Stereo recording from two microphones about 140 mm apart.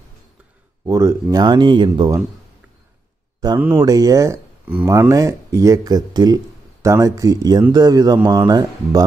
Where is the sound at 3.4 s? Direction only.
30° right (ahead or behind).